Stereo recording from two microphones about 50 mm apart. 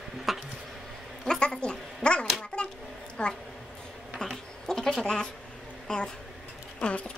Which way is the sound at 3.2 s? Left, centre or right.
Left.